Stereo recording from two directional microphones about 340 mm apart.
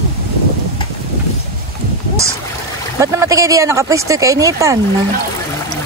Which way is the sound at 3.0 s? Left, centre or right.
Centre.